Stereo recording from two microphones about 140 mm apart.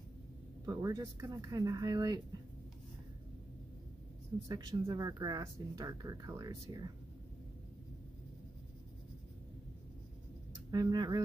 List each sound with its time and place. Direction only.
0.7 s speech: 25° right (ahead or behind)
4.5 s speech: 25° right (ahead or behind)
10.7 s speech: 30° right (ahead or behind)